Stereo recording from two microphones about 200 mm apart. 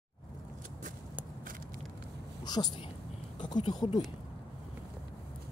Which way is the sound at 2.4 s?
20° left (ahead or behind).